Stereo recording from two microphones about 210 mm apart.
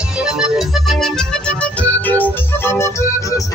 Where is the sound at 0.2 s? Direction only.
5° right (ahead or behind).